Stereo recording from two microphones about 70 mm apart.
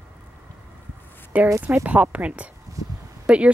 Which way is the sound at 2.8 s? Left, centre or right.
Right.